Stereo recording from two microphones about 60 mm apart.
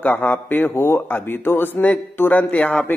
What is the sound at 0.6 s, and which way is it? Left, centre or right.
Speech, left.